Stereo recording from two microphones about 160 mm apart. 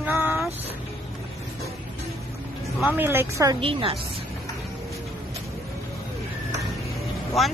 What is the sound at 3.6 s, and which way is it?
Speech, 35° right (ahead or behind).